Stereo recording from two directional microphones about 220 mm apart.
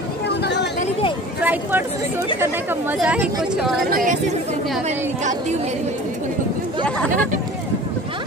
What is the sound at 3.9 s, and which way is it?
Speech, 35° right (ahead or behind).